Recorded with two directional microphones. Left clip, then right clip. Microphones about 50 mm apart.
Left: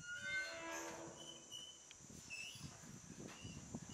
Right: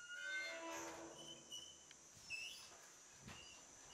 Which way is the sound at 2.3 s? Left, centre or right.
Right.